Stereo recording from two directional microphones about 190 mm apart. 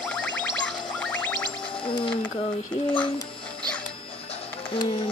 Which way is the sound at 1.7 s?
25° left (ahead or behind).